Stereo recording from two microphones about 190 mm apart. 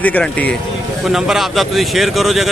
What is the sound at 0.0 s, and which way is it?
Speech, 10° left (ahead or behind).